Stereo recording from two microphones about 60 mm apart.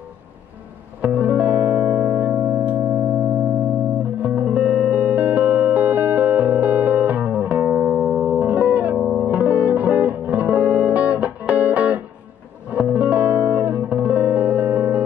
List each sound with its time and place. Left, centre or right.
1.0 s music: right
2.1 s music: right
4.2 s music: right
8.9 s music: centre
9.2 s music: right